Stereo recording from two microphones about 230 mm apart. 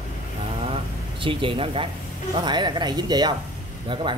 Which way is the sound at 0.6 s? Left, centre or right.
Right.